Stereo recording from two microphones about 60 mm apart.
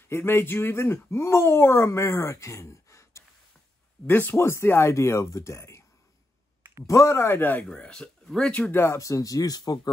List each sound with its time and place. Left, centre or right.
0.1 s speech: left
4.1 s speech: left
6.9 s speech: left
7.2 s speech: left
7.7 s speech: centre
8.9 s speech: left